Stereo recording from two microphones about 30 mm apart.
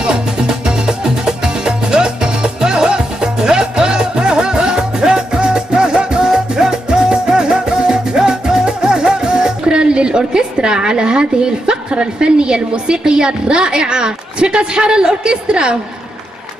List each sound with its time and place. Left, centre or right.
0.0 s music: right